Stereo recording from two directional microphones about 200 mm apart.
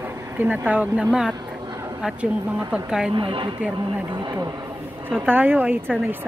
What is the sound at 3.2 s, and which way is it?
Speech, 25° right (ahead or behind).